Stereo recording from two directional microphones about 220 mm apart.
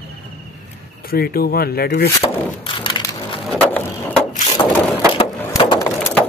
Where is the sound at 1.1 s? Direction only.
45° left (ahead or behind).